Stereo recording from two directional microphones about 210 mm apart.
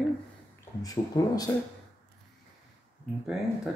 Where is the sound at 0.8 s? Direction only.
15° left (ahead or behind).